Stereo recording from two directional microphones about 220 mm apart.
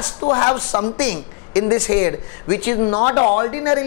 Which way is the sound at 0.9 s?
10° left (ahead or behind).